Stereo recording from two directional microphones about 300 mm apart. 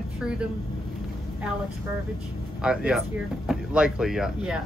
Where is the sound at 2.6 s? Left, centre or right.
Centre.